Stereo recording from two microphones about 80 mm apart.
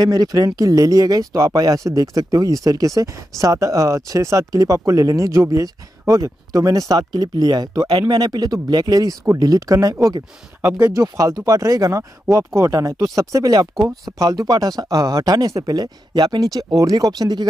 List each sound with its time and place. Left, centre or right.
0.0 s speech: right
8.1 s speech: right